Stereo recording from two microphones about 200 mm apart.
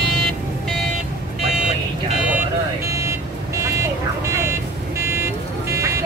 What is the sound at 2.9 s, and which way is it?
Vehicle, 15° right (ahead or behind).